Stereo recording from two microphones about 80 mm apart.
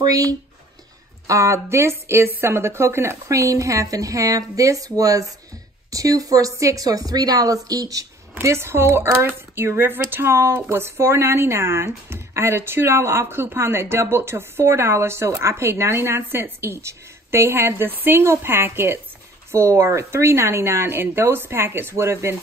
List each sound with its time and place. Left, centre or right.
0.0 s a woman's voice: right